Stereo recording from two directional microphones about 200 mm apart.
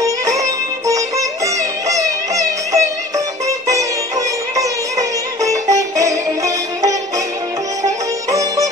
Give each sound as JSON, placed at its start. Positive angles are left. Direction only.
{"t": 0.0, "sound": "music", "side_deg": -15}